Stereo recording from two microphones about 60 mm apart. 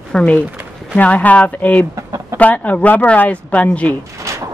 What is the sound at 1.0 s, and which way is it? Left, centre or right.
Speech, left.